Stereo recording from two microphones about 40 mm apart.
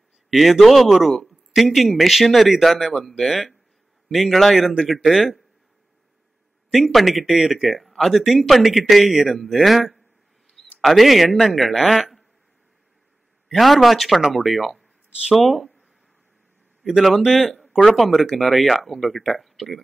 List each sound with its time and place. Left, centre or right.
0.3 s speech: centre
6.7 s speech: centre
13.5 s speech: centre
17.2 s speech: centre